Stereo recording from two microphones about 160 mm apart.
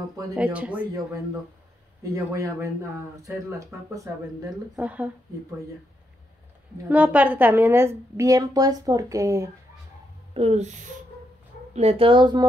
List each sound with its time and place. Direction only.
0.4 s a woman's voice: 10° right (ahead or behind)
2.1 s speech: 20° right (ahead or behind)
4.7 s a woman's voice: 10° right (ahead or behind)
6.9 s a woman's voice: 10° right (ahead or behind)
10.3 s speech: 40° right (ahead or behind)